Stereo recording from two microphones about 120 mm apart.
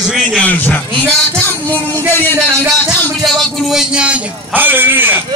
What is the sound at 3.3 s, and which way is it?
A man's voice, centre (ahead or behind).